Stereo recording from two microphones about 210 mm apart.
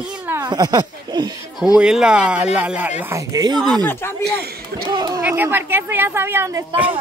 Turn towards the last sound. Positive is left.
turn(degrees=-15)  # may be behind; listen again after turning